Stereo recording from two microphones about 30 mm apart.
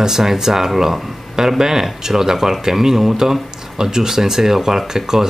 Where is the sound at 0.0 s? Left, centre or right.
Centre.